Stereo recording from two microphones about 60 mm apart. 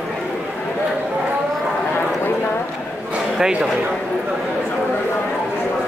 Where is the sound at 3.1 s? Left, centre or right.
Centre.